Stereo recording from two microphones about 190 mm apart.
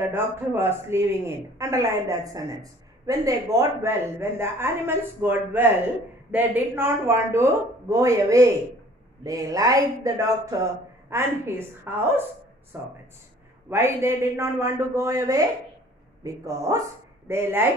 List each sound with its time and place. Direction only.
0.0 s speech: 10° right (ahead or behind)